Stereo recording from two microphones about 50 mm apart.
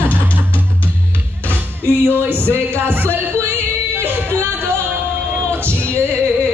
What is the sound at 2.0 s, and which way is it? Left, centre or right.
Speech, right.